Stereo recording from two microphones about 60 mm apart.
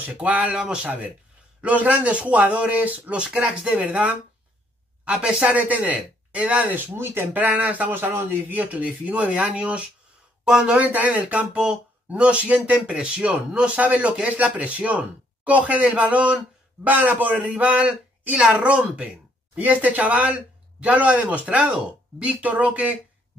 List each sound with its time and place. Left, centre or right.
0.0 s speech: right
3.2 s speech: centre
3.7 s speech: right
7.4 s speech: right
7.9 s speech: right